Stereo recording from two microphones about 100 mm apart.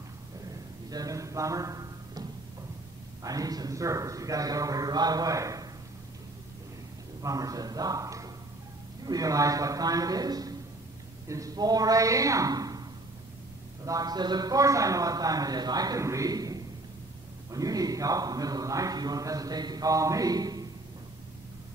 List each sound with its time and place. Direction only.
0.8 s a man's voice: 40° right (ahead or behind)
3.3 s a man's voice: 40° right (ahead or behind)
7.2 s a man's voice: 35° right (ahead or behind)
13.8 s a man's voice: 40° right (ahead or behind)